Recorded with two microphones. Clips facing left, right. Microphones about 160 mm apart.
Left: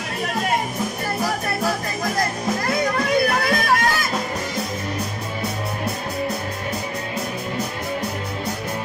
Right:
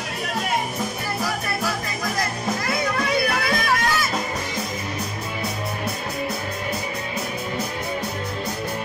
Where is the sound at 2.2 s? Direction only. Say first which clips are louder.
Left 2 dB; 45° left (ahead or behind).